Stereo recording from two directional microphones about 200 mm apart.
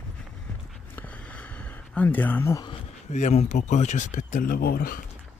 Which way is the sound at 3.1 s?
35° left (ahead or behind).